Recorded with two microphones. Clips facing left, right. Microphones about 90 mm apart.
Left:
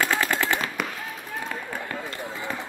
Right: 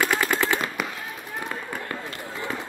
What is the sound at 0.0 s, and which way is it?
Machine gun, 20° right (ahead or behind).